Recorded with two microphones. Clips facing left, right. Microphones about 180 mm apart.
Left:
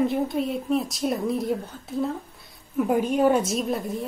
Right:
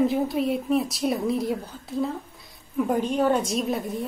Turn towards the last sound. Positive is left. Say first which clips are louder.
# even
turn(degrees=0)  # may be behind; listen again after turning